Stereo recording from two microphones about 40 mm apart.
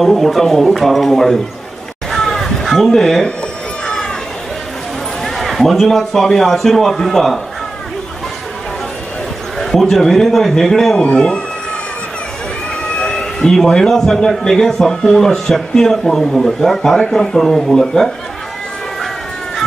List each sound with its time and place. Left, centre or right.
0.0 s a man's voice: centre
2.0 s a sound: centre
5.2 s a man's voice: centre
9.6 s a man's voice: centre
11.1 s speech: left
12.9 s a sound: centre
13.7 s a man's voice: centre